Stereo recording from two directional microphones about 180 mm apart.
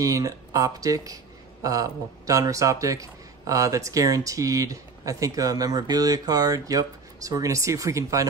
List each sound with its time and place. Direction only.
0.0 s speech: 20° right (ahead or behind)